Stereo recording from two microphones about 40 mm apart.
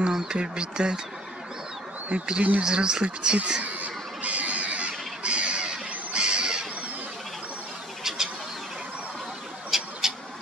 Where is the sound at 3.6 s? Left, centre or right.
Right.